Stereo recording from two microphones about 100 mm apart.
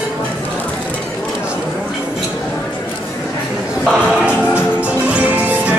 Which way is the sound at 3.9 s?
10° right (ahead or behind).